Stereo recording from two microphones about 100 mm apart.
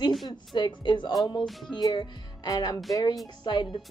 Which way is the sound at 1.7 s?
45° left (ahead or behind).